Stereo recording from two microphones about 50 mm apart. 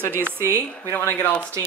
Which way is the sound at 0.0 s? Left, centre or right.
Right.